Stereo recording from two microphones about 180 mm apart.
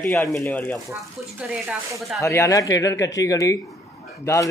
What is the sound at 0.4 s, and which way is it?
Speech, 10° left (ahead or behind).